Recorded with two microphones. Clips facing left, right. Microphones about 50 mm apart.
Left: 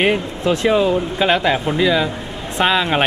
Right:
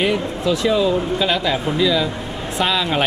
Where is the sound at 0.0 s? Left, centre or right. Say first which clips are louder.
Left 2 dB; left.